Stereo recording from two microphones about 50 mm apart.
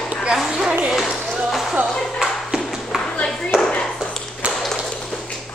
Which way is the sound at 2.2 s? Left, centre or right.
Centre.